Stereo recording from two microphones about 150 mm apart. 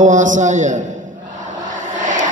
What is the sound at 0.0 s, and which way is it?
Speech, 55° right (ahead or behind).